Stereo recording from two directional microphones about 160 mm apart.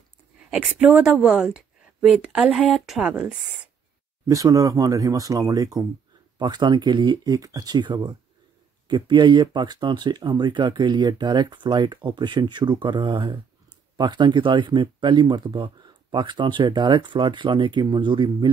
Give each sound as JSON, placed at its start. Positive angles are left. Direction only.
{"t": 0.5, "sound": "speech", "side_deg": -10}
{"t": 4.3, "sound": "speech", "side_deg": -20}